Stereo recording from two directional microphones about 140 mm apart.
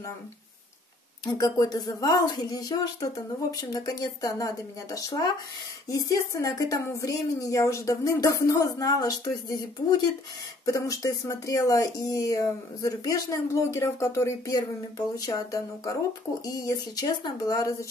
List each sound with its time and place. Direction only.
1.2 s speech: 25° left (ahead or behind)